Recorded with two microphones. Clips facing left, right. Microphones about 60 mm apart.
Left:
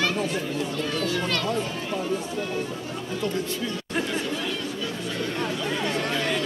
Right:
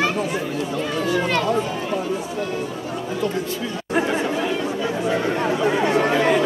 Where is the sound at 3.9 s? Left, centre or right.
Right.